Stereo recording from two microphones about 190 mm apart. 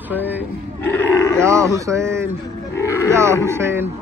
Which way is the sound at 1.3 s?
15° right (ahead or behind).